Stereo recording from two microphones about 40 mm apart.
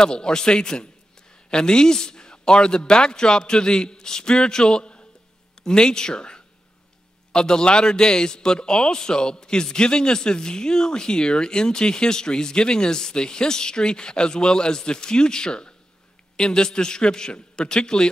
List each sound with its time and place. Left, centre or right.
0.0 s a man's voice: left